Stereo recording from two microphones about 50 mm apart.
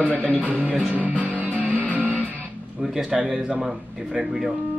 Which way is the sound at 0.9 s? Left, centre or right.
Right.